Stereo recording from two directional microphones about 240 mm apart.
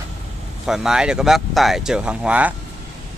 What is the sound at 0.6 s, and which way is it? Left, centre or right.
Speech, centre.